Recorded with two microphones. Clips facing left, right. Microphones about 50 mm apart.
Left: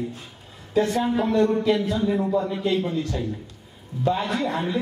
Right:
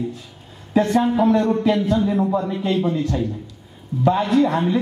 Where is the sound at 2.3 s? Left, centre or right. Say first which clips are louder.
Right 2 dB; right.